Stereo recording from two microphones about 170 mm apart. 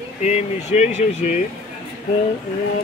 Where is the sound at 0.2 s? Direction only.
40° left (ahead or behind).